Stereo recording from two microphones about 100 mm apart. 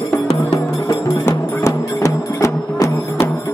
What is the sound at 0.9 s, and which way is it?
Music, 30° left (ahead or behind).